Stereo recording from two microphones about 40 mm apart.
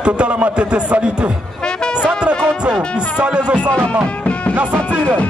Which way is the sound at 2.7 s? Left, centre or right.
Right.